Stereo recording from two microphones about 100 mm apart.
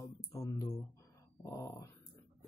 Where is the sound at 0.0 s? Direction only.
30° left (ahead or behind).